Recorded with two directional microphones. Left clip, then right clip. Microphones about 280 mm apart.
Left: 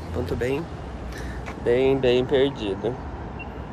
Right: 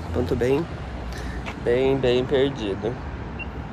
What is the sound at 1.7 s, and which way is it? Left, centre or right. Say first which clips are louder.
Speech: left 1 dB; centre.